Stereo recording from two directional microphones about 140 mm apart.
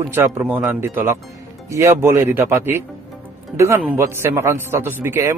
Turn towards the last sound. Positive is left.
turn(degrees=-15)  # may be behind; listen again after turning